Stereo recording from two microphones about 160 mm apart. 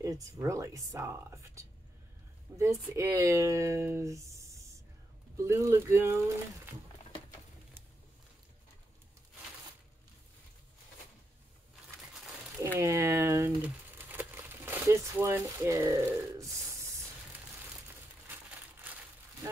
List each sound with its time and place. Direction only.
0.0 s speech: 20° right (ahead or behind)
12.7 s speech: 20° right (ahead or behind)
18.3 s a sound: 10° right (ahead or behind)